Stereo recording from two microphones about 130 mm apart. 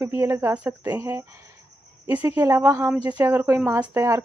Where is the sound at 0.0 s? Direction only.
20° right (ahead or behind).